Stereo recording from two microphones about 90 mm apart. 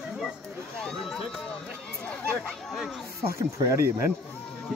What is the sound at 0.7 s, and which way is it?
Speech, 5° left (ahead or behind).